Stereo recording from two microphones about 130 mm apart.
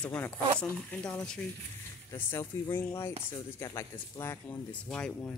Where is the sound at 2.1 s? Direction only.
20° left (ahead or behind).